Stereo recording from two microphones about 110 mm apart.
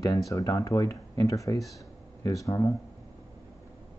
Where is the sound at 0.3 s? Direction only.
30° left (ahead or behind).